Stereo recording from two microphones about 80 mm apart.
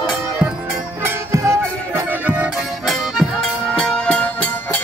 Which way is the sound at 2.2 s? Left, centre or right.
Centre.